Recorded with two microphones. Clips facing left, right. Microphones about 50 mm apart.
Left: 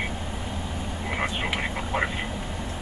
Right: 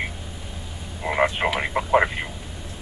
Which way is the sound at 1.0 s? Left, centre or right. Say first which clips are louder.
Right 8 dB; right.